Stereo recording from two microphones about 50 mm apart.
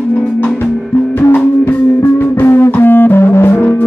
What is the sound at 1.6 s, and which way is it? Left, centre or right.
Music, left.